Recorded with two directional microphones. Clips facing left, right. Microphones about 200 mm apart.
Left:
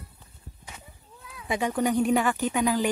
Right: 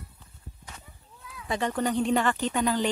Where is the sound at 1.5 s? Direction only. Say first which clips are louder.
Left 2 dB; 10° left (ahead or behind).